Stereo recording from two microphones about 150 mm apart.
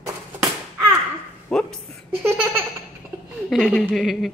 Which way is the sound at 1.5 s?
5° left (ahead or behind).